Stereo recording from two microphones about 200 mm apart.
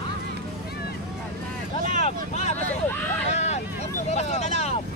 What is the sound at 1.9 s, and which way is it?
Vehicle, 35° left (ahead or behind).